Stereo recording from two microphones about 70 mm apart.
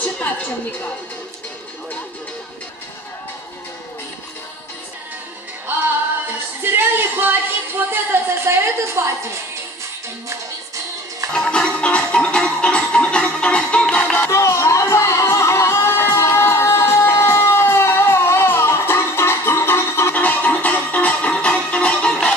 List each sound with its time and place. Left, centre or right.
6.6 s a sound: right
11.3 s music: centre
14.3 s music: left; by 22.3 s centre